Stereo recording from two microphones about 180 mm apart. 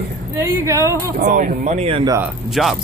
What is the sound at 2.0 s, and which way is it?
Speech, 15° right (ahead or behind).